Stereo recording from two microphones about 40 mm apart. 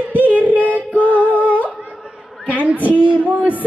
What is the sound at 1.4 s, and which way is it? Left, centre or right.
Humming, right.